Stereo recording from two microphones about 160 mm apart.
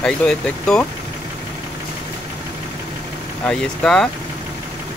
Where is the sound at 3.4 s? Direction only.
5° left (ahead or behind).